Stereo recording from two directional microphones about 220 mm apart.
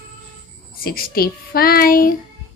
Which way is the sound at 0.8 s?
40° left (ahead or behind).